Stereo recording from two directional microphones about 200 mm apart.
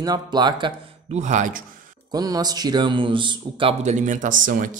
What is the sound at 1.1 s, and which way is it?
Speech, 35° right (ahead or behind).